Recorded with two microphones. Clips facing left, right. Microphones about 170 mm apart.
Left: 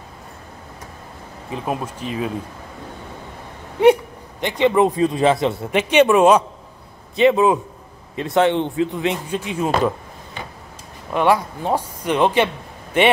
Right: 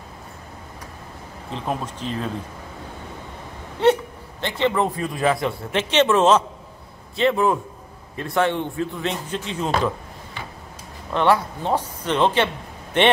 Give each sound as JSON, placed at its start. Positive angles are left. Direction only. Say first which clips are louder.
{"t": 1.5, "sound": "a man's voice", "louder": "left 2 dB", "side_deg": 10}
{"t": 3.8, "sound": "a man's voice", "louder": "left 5 dB", "side_deg": 15}